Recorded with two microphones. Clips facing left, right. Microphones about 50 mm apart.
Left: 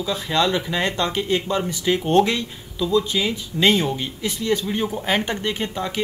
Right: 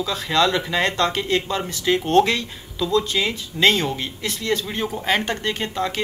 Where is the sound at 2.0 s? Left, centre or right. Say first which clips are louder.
Even; centre.